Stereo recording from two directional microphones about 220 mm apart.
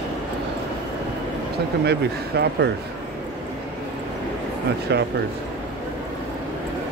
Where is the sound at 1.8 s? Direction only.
50° right (ahead or behind).